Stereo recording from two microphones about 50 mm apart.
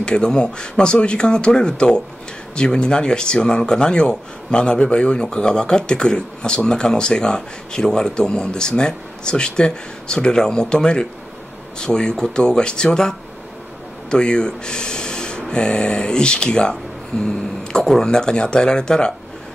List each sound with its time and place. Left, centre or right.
0.0 s speech: centre
14.1 s speech: centre